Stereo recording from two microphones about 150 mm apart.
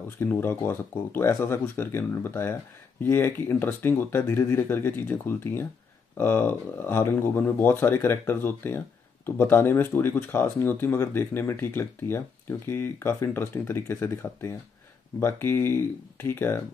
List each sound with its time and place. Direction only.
0.2 s speech: 15° left (ahead or behind)